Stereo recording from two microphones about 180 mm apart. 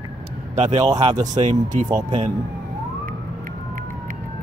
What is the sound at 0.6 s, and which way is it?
Speech, 40° right (ahead or behind).